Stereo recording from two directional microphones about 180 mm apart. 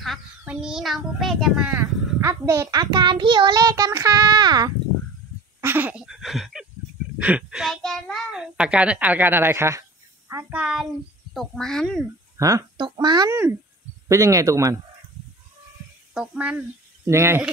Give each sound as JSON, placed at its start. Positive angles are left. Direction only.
{"t": 0.0, "sound": "a child's voice", "side_deg": 0}
{"t": 1.8, "sound": "a child's voice", "side_deg": -15}
{"t": 5.6, "sound": "a sound", "side_deg": -10}
{"t": 7.2, "sound": "a child's voice", "side_deg": -5}
{"t": 12.4, "sound": "speech", "side_deg": -20}
{"t": 16.1, "sound": "speech", "side_deg": -5}